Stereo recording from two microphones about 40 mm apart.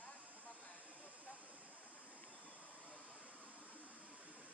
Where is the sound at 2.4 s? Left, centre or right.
Left.